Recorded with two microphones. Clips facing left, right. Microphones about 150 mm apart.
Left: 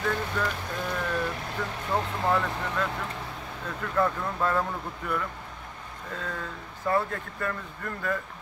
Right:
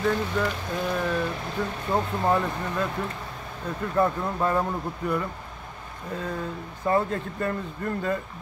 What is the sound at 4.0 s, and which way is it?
Speech, 20° right (ahead or behind).